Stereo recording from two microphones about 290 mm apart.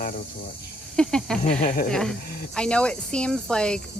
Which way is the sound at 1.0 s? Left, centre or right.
Centre.